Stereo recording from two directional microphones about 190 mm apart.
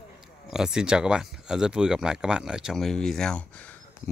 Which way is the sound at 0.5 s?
5° right (ahead or behind).